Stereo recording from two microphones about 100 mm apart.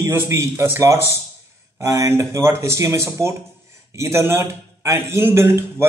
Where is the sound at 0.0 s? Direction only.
25° right (ahead or behind).